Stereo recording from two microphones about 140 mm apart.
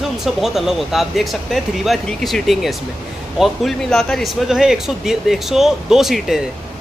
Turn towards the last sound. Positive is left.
turn(degrees=0)  # may be behind; listen again after turning